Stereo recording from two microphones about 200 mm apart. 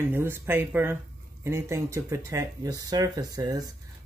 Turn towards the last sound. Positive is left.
turn(degrees=-20)  # may be behind; listen again after turning